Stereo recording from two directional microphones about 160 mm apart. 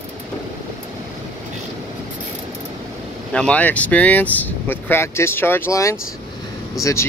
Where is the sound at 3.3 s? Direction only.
5° left (ahead or behind).